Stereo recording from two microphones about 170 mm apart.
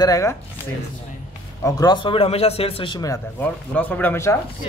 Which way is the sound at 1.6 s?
20° left (ahead or behind).